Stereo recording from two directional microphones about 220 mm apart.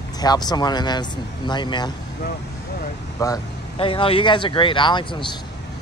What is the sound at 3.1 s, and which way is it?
Speech, 15° left (ahead or behind).